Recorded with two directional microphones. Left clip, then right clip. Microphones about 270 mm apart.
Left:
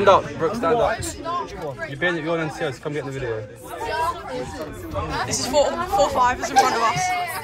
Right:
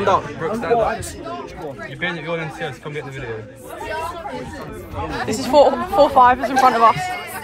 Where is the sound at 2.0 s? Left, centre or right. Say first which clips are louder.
Left 2 dB; left.